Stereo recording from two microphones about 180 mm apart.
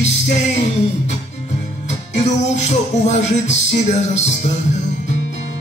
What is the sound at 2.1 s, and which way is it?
Music, 40° left (ahead or behind).